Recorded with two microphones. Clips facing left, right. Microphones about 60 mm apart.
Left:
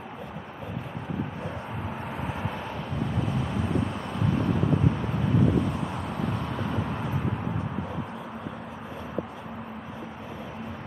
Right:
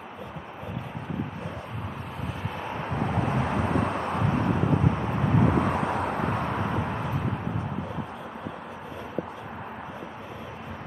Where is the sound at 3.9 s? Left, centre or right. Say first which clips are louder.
Right 3 dB; right.